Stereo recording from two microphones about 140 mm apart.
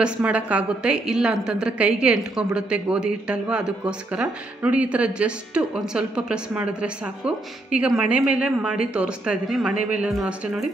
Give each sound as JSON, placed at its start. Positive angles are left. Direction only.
{"t": 0.0, "sound": "a woman's voice", "side_deg": -10}